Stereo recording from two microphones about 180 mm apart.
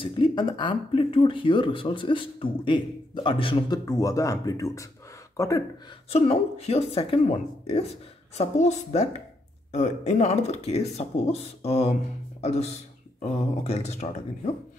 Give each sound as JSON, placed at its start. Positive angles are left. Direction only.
{"t": 0.0, "sound": "speech", "side_deg": 25}
{"t": 3.8, "sound": "speech", "side_deg": 20}
{"t": 6.0, "sound": "speech", "side_deg": 35}